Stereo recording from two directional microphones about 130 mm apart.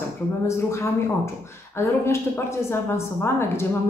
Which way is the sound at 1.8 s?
20° left (ahead or behind).